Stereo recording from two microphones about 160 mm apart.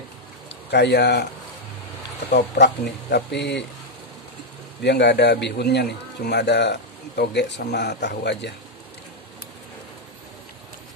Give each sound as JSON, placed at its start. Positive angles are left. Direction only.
{"t": 0.7, "sound": "a man's voice", "side_deg": 90}
{"t": 2.2, "sound": "a man's voice", "side_deg": 90}
{"t": 4.8, "sound": "a man's voice", "side_deg": 90}